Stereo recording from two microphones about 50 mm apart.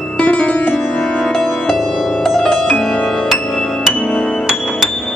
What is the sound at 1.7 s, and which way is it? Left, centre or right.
Music, centre.